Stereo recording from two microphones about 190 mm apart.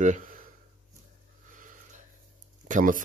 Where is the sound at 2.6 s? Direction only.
45° right (ahead or behind).